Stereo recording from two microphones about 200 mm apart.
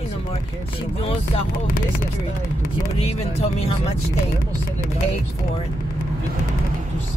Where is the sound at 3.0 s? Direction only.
30° left (ahead or behind).